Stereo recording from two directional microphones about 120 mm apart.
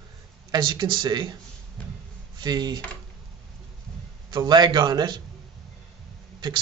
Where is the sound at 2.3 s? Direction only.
35° right (ahead or behind).